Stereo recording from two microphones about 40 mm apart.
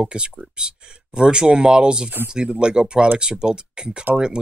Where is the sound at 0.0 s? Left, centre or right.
Right.